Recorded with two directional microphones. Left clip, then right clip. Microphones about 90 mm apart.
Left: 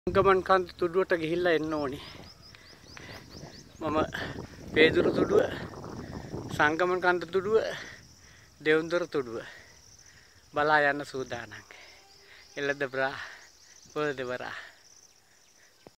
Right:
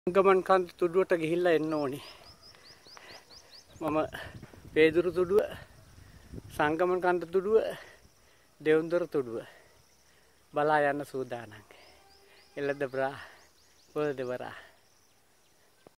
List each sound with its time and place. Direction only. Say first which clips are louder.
0.0 s speech: even; 25° right (ahead or behind)